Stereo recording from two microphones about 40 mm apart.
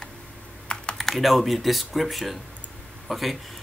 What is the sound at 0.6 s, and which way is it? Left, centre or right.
Typing, left.